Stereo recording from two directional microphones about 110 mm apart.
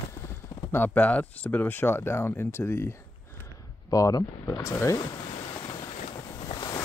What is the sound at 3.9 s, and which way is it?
Speech, 35° left (ahead or behind).